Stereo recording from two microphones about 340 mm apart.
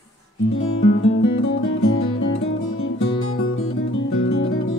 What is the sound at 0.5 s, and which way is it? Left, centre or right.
Music, left.